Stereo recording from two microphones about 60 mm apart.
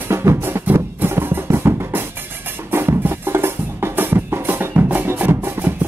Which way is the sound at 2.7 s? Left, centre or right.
Right.